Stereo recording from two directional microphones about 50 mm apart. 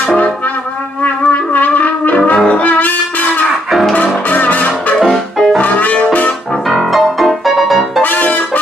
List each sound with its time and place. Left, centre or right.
1.0 s brass instrument: left
2.3 s brass instrument: left
2.6 s brass instrument: left
3.9 s music: left
5.0 s music: centre
5.6 s music: left
6.7 s music: centre
8.0 s brass instrument: left